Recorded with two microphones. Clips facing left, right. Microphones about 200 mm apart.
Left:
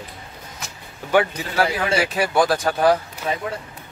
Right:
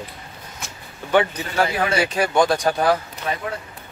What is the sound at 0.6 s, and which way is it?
A man's voice, 10° left (ahead or behind).